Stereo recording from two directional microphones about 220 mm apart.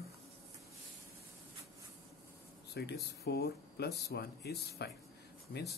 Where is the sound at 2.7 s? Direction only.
45° left (ahead or behind).